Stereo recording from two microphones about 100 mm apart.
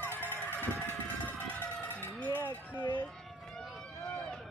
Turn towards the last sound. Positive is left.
turn(degrees=0)  # may be behind; listen again after turning